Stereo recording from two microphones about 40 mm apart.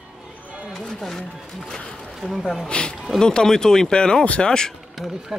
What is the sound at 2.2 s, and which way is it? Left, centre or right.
Speech, centre.